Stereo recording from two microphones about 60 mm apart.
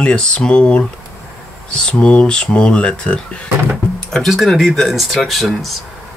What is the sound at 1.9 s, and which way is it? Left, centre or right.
Speech, centre.